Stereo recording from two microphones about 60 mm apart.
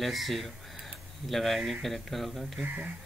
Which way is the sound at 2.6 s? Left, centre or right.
Right.